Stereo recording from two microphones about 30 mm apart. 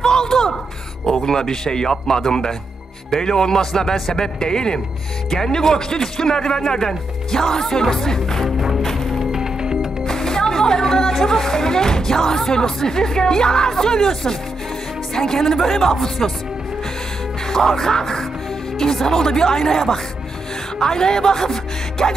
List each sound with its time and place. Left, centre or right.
0.0 s a sound: centre
1.0 s speech: centre
8.5 s music: centre
10.0 s music: centre
11.3 s speech: centre
17.5 s speech: centre